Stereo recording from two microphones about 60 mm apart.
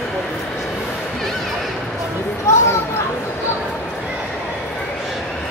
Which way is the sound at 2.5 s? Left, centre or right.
Left.